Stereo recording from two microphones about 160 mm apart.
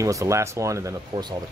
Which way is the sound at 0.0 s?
20° right (ahead or behind).